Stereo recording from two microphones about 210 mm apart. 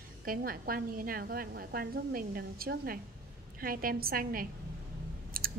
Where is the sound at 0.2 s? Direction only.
45° right (ahead or behind).